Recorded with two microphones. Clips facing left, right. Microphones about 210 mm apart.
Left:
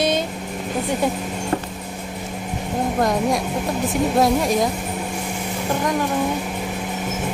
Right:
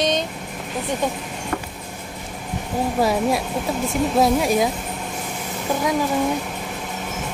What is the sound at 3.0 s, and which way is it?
A woman's voice, 5° right (ahead or behind).